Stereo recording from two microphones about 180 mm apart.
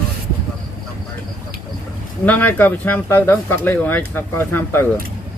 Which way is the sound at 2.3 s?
10° left (ahead or behind).